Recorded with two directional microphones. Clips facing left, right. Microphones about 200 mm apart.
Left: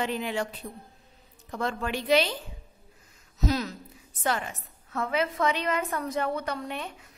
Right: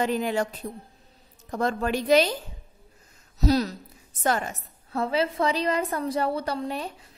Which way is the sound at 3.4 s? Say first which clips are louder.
Right 5 dB; 35° right (ahead or behind).